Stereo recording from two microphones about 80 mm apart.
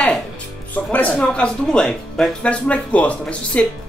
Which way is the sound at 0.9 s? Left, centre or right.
Centre.